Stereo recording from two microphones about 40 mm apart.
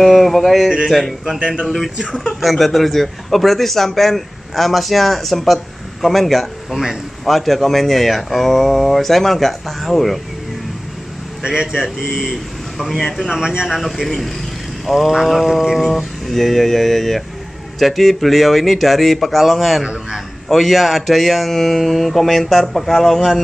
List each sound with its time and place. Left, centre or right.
0.0 s a man's voice: centre
2.0 s speech: centre
2.4 s a man's voice: centre
11.4 s a man's voice: centre
13.7 s a man's voice: centre
19.8 s a man's voice: right
20.4 s a man's voice: centre